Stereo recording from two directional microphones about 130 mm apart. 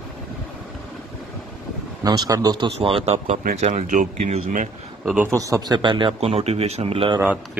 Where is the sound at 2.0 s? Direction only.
30° right (ahead or behind).